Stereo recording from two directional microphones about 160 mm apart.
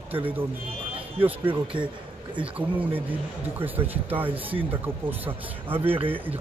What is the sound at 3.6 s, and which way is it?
Speech, 10° right (ahead or behind).